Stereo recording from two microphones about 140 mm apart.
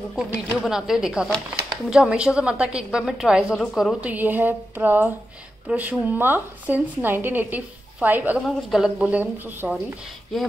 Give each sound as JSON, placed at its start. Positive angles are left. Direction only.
{"t": 0.1, "sound": "a woman's voice", "side_deg": -5}
{"t": 4.0, "sound": "speech", "side_deg": -10}
{"t": 8.5, "sound": "speech", "side_deg": 0}